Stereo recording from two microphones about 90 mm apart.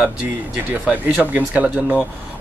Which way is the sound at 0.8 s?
20° right (ahead or behind).